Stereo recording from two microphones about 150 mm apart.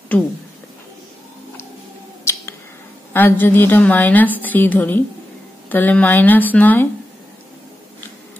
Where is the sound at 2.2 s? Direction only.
20° left (ahead or behind).